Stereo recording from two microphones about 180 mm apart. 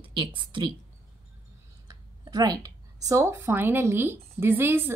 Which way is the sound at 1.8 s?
25° right (ahead or behind).